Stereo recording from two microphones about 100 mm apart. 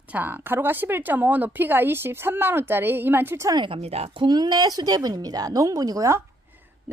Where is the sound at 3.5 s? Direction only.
45° right (ahead or behind).